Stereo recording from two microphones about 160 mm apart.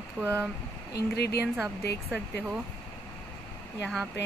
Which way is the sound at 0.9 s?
90° left.